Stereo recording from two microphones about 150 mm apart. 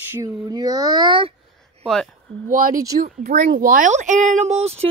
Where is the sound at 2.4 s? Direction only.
70° right (ahead or behind).